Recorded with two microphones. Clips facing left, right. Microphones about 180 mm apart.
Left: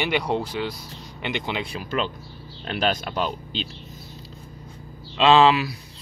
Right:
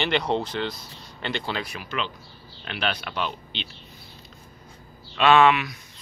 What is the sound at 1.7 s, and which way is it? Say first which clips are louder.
Speech: left 5 dB; 40° left (ahead or behind).